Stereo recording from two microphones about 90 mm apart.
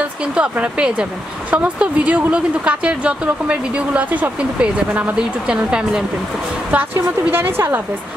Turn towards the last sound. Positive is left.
turn(degrees=-25)  # may be behind; listen again after turning